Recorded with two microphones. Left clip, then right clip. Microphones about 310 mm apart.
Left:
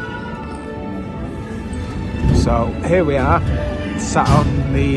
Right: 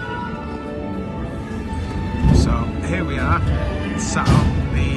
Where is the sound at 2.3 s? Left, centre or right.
Centre.